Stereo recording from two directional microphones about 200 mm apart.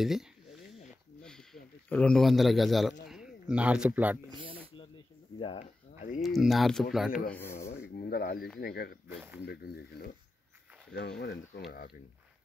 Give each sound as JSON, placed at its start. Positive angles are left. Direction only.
{"t": 0.0, "sound": "a man's voice", "side_deg": 0}
{"t": 5.6, "sound": "a sound", "side_deg": 40}
{"t": 6.2, "sound": "speech", "side_deg": 0}
{"t": 7.2, "sound": "speech", "side_deg": 10}
{"t": 7.8, "sound": "a sound", "side_deg": 50}
{"t": 8.5, "sound": "speech", "side_deg": 50}